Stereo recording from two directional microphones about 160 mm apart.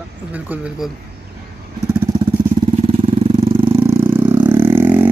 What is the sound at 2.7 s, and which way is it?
Vehicle, 35° right (ahead or behind).